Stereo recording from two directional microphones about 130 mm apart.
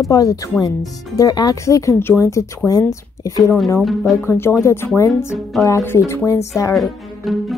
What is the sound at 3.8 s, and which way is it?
Speech, centre (ahead or behind).